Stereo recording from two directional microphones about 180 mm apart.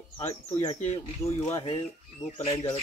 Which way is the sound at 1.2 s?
15° left (ahead or behind).